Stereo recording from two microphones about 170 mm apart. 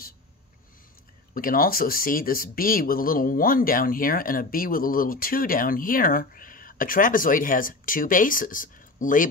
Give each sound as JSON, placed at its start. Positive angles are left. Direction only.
{"t": 1.3, "sound": "speech", "side_deg": 55}